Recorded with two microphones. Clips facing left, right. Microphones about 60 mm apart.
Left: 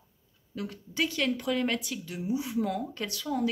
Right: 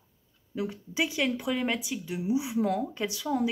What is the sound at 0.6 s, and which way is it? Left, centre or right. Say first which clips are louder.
Speech: right 2 dB; centre.